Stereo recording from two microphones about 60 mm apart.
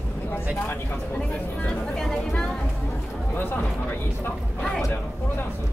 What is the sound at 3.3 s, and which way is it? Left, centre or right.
Speech, left.